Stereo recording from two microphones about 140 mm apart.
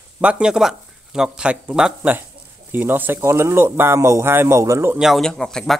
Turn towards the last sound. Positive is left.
turn(degrees=5)  # may be behind; listen again after turning